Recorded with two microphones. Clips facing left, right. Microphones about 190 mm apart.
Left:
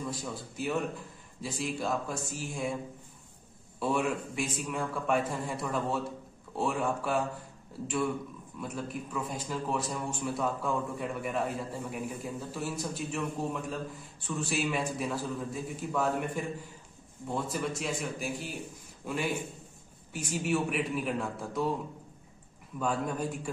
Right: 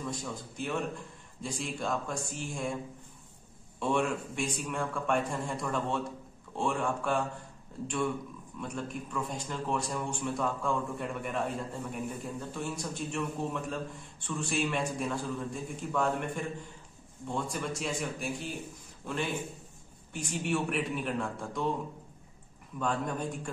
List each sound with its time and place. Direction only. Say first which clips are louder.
0.0 s a man's voice: left 1 dB; 5° left (ahead or behind)
3.8 s a man's voice: even; 5° left (ahead or behind)
8.5 s a man's voice: even; 5° left (ahead or behind)
17.3 s a man's voice: left 1 dB; centre (ahead or behind)
22.8 s a man's voice: left 1 dB; 5° left (ahead or behind)